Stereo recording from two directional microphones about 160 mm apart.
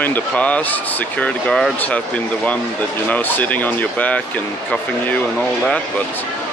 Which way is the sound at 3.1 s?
10° left (ahead or behind).